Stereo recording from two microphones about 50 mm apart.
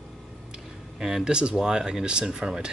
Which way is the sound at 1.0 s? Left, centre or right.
Centre.